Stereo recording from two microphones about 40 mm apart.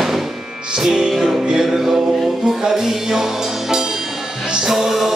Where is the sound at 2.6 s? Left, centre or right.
Centre.